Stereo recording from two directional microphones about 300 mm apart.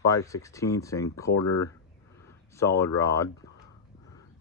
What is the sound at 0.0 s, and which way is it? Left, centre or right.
Speech, centre.